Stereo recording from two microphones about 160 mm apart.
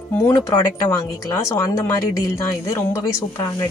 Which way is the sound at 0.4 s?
20° left (ahead or behind).